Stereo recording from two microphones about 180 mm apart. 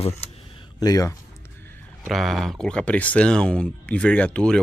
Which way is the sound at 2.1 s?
Centre (ahead or behind).